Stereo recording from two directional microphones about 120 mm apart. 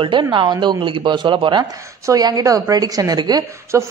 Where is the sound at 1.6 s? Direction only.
30° right (ahead or behind).